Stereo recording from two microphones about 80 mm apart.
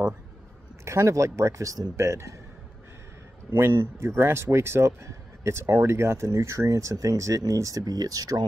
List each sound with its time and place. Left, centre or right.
0.8 s speech: right
3.5 s speech: right